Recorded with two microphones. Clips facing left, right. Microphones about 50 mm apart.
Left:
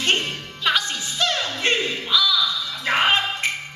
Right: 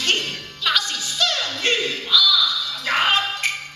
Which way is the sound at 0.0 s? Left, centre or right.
Left.